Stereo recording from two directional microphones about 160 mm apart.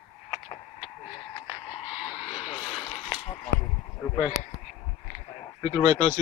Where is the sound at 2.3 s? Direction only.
35° left (ahead or behind).